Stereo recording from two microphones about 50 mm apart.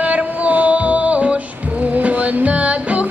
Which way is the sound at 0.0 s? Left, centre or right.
Right.